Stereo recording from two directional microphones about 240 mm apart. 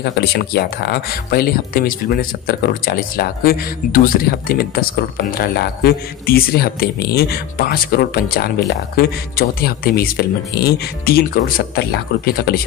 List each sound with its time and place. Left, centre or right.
0.0 s speech: left